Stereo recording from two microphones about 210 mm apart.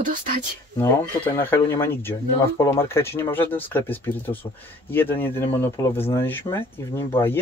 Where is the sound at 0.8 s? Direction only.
10° left (ahead or behind).